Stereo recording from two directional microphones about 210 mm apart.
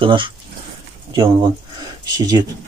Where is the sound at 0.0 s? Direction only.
25° right (ahead or behind).